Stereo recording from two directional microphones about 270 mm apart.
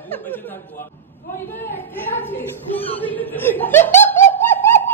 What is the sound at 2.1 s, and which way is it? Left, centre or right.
Speech, centre.